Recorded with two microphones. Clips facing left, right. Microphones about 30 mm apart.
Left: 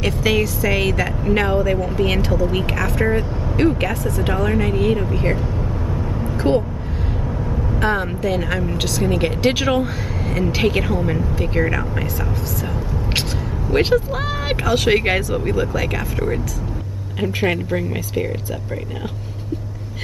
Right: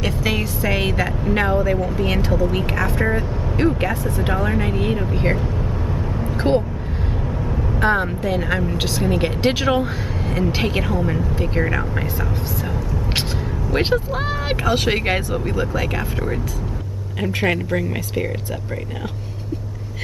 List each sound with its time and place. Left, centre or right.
0.2 s music: centre
0.6 s speech: centre
1.2 s speech: centre
2.7 s speech: centre
3.1 s speech: centre
4.2 s speech: centre
6.4 s speech: centre
7.8 s speech: centre
8.7 s speech: right
9.0 s speech: centre
13.7 s speech: centre
17.5 s speech: centre